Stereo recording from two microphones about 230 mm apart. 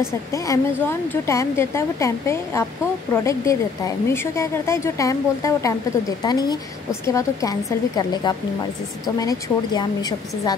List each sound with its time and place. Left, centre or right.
0.0 s a woman's voice: centre